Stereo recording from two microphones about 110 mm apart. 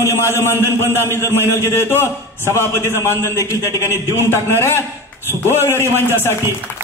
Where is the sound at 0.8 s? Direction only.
20° left (ahead or behind).